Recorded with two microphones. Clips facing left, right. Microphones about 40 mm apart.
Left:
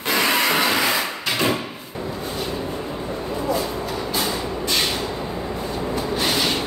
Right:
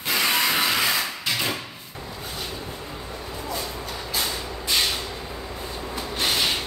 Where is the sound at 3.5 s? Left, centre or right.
Centre.